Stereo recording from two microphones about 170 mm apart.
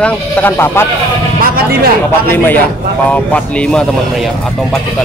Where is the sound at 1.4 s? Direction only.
60° right (ahead or behind).